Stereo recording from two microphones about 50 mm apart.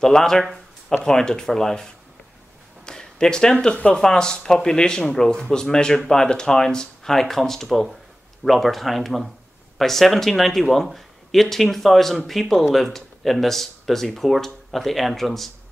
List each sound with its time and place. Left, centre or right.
0.0 s speech: centre